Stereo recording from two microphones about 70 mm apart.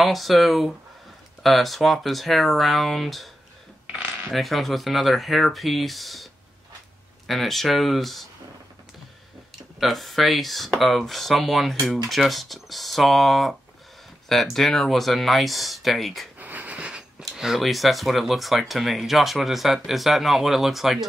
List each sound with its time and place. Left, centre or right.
0.0 s speech: centre
3.8 s coin: right
4.3 s speech: centre
7.2 s speech: centre
9.8 s speech: centre
16.3 s wheeze: right
17.4 s speech: centre